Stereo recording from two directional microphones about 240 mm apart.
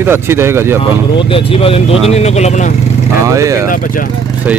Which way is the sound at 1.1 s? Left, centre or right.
Left.